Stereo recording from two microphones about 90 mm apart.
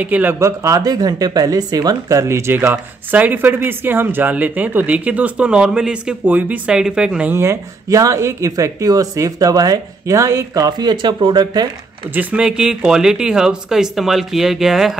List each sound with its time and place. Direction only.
0.0 s speech: 20° right (ahead or behind)
0.4 s speech: 35° right (ahead or behind)
2.7 s speech: 20° right (ahead or behind)
7.3 s speech: 35° right (ahead or behind); by 11.6 s 55° right (ahead or behind)
12.1 s speech: 15° right (ahead or behind)